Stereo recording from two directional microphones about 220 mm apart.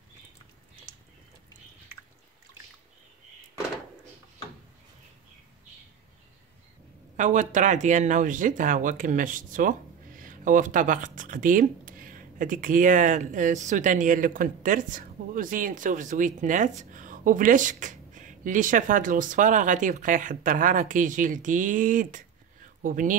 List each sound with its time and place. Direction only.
7.2 s speech: 35° right (ahead or behind)